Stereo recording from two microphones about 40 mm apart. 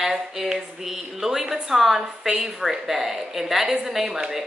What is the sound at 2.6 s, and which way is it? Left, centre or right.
A woman's voice, centre.